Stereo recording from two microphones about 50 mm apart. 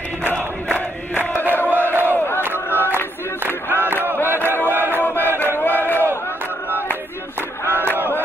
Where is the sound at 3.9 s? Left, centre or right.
Right.